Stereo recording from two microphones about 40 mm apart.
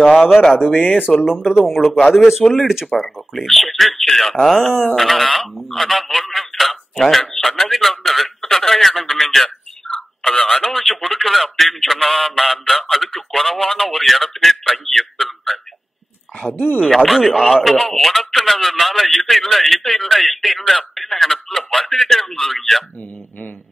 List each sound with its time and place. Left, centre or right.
0.4 s speech: left
1.2 s speech: centre
2.9 s speech: centre
9.9 s telephone: centre
10.8 s speech: centre
16.9 s speech: centre